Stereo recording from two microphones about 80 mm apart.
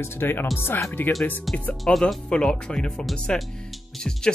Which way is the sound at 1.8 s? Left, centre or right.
Centre.